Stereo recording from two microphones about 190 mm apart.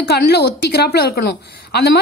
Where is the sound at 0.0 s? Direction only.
55° left (ahead or behind).